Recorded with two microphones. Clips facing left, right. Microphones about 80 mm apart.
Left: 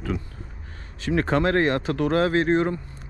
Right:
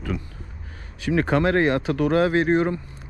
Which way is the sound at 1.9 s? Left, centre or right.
Left.